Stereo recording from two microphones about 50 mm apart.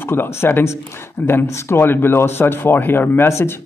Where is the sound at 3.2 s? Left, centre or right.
Left.